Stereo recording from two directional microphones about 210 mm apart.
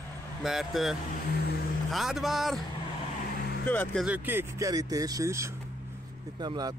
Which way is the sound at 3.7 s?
5° left (ahead or behind).